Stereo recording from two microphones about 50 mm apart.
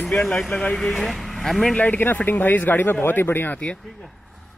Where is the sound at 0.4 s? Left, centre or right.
Centre.